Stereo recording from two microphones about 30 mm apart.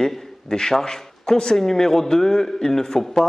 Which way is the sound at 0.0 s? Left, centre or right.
Centre.